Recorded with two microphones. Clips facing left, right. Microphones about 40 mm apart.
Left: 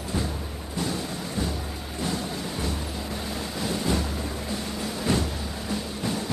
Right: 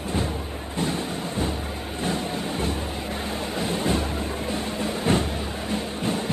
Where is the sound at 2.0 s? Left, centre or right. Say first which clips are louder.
Right 3 dB; right.